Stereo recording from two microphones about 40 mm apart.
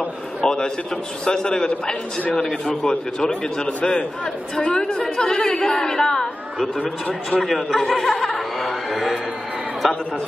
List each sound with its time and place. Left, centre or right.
0.4 s a man's voice: centre
7.2 s speech: centre